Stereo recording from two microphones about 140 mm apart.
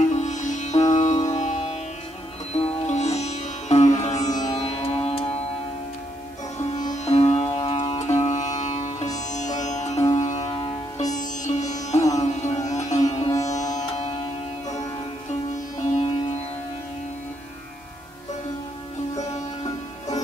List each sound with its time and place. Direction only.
0.1 s music: 60° left (ahead or behind)
6.8 s music: 55° left (ahead or behind)
12.2 s sitar: 55° left (ahead or behind)
13.4 s music: 55° left (ahead or behind)
15.8 s music: 55° left (ahead or behind)